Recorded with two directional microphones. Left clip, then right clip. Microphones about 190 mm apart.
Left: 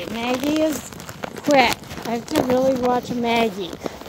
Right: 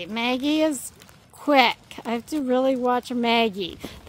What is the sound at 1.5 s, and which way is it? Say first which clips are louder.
Speech: left 2 dB; 15° right (ahead or behind).